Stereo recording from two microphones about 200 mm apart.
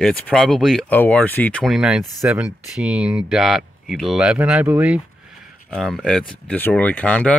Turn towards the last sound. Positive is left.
turn(degrees=5)  # may be behind; listen again after turning